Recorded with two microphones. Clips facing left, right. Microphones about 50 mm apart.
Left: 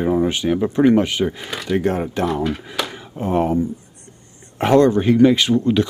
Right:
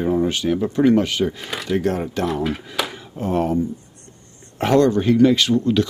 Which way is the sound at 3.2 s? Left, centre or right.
Left.